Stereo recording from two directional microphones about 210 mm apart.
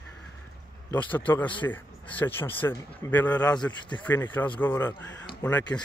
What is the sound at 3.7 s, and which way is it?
Speech, 20° left (ahead or behind).